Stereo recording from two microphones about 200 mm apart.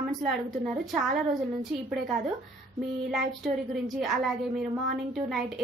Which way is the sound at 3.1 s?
Centre (ahead or behind).